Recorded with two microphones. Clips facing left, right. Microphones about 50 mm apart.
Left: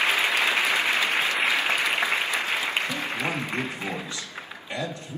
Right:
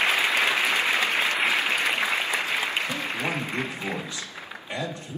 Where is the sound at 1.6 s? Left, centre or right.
Left.